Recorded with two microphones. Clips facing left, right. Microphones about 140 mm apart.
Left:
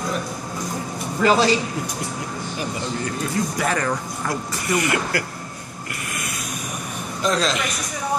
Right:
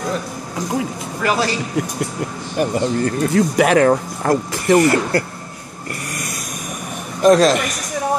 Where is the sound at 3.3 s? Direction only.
75° right (ahead or behind); by 5.2 s 40° right (ahead or behind).